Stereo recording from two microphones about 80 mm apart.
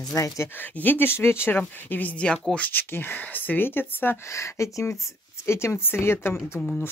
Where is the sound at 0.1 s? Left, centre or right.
Left.